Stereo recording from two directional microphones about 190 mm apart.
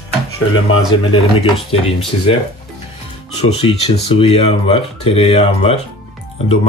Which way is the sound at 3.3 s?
30° left (ahead or behind).